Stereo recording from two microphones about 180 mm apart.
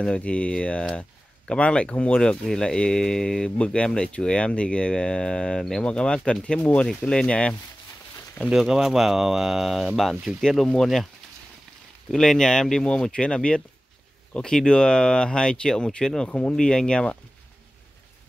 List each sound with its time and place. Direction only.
0.0 s speech: 5° left (ahead or behind)
12.1 s speech: centre (ahead or behind)